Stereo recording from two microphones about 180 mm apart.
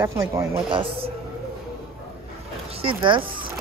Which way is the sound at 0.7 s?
30° right (ahead or behind).